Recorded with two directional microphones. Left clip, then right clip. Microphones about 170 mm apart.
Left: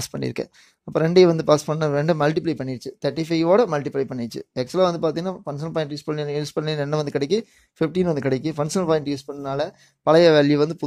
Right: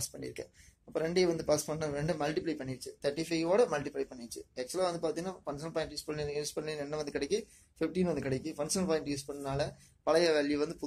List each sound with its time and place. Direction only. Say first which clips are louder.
0.1 s speech: left 15 dB; 45° left (ahead or behind)